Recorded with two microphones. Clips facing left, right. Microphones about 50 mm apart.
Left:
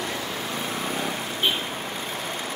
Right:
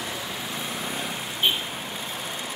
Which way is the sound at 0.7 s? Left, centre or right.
Left.